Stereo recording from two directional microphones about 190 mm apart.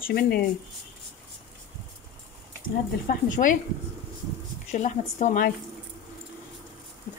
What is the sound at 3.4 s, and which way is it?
Speech, 40° left (ahead or behind).